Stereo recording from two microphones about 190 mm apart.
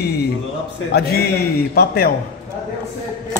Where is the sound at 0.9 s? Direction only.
55° left (ahead or behind).